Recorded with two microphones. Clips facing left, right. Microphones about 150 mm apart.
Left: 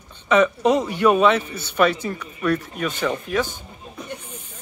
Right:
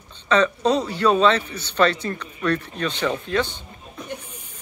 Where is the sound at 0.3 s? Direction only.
15° left (ahead or behind).